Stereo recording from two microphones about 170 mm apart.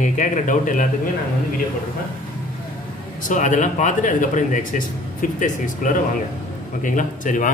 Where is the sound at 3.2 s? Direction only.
50° left (ahead or behind).